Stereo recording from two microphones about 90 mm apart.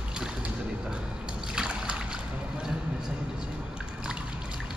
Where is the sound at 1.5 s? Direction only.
10° right (ahead or behind).